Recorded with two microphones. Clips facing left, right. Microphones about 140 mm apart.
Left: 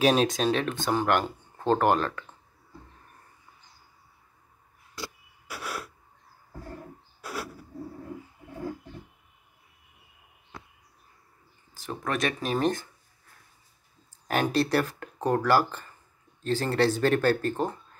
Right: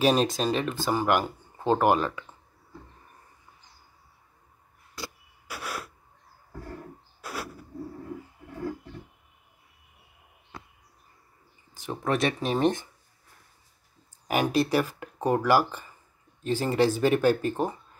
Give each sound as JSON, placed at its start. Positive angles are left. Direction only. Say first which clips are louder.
{"t": 0.0, "sound": "speech", "louder": "even", "side_deg": 0}
{"t": 11.7, "sound": "speech", "louder": "right 3 dB", "side_deg": -20}
{"t": 14.2, "sound": "speech", "louder": "right 1 dB", "side_deg": -10}